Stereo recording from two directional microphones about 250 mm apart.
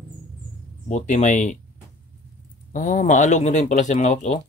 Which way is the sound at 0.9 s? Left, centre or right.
Left.